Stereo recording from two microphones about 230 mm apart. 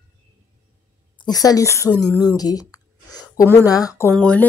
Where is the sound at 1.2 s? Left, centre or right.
Centre.